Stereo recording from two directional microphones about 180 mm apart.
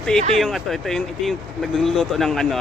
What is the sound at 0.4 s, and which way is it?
Speech, centre (ahead or behind).